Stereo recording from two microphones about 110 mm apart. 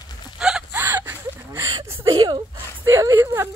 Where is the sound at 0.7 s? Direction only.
20° right (ahead or behind).